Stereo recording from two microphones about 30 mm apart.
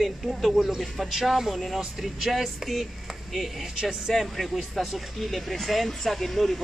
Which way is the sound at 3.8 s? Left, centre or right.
Centre.